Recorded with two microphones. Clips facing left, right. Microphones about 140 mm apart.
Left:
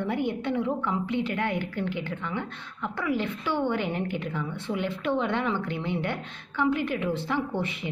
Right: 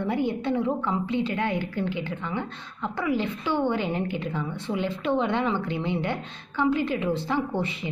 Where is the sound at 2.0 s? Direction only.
15° right (ahead or behind).